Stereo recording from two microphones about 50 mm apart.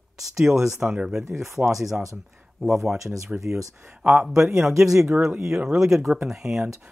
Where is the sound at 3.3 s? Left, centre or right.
Centre.